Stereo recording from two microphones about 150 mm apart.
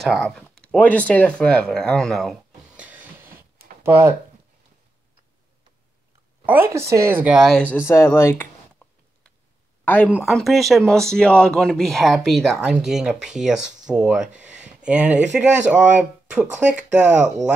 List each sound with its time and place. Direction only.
0.0 s speech: 5° left (ahead or behind); by 3.4 s 10° right (ahead or behind)
6.4 s speech: 15° right (ahead or behind)
7.6 s speech: 15° left (ahead or behind)
8.8 s a sound: 5° left (ahead or behind)
9.8 s speech: 10° left (ahead or behind)
10.1 s speech: centre (ahead or behind)